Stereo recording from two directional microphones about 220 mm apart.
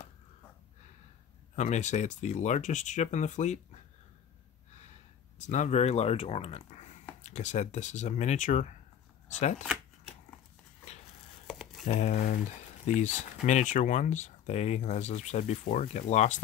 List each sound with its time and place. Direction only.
1.5 s speech: 30° left (ahead or behind)
5.4 s speech: 35° left (ahead or behind)
11.4 s a sound: centre (ahead or behind)
11.8 s speech: 30° left (ahead or behind)